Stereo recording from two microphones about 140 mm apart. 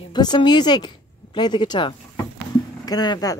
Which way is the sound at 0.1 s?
30° left (ahead or behind).